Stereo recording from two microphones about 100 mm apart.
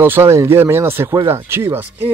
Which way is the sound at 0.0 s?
25° right (ahead or behind).